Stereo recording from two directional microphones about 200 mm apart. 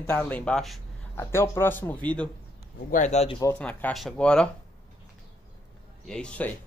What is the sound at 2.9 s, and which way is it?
Speech, 35° left (ahead or behind).